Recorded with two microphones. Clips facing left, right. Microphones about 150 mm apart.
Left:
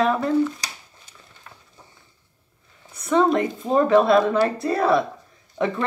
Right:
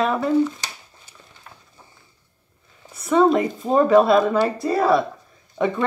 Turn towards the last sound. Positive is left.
turn(degrees=-5)  # may be behind; listen again after turning